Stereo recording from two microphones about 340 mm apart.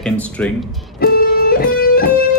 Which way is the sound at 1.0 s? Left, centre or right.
Left.